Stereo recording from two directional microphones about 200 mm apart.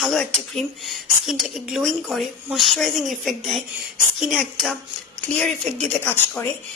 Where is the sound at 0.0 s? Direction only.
Centre (ahead or behind).